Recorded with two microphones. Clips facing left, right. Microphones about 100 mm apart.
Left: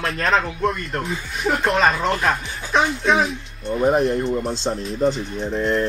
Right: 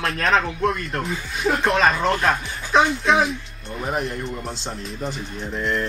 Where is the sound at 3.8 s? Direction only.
30° left (ahead or behind).